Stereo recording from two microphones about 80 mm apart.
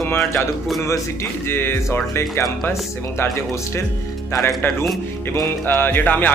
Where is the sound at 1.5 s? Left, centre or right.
Left.